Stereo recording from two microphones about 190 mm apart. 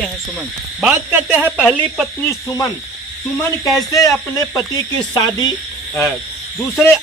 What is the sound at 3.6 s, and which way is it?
Speech, 20° left (ahead or behind).